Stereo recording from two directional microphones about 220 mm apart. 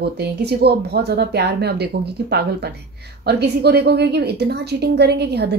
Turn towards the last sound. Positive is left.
turn(degrees=-50)  # may be behind; listen again after turning